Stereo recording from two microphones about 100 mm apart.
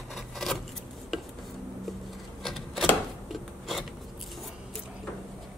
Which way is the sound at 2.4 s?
Centre (ahead or behind).